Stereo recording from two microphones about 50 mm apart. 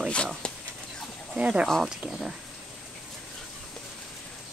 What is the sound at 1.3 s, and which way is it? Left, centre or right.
Speech, right.